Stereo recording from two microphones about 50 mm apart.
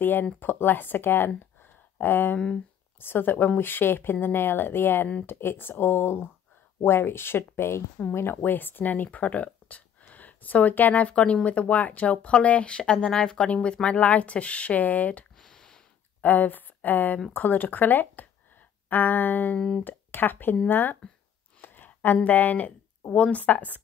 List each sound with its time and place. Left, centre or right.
0.0 s speech: left
2.3 s speech: centre
3.0 s speech: left
8.4 s speech: left
15.3 s a sound: centre
16.2 s speech: left